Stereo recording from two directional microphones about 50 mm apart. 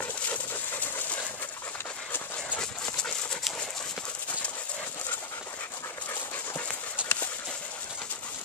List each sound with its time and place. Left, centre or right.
0.3 s dog: left
7.0 s horse: right